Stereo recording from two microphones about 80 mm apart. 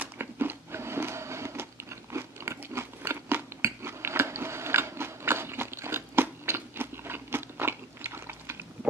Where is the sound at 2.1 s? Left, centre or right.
Right.